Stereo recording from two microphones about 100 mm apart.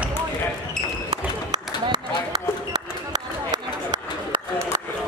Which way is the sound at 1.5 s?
40° right (ahead or behind).